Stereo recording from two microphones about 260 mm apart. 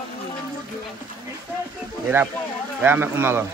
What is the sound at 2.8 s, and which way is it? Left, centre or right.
Speech, centre.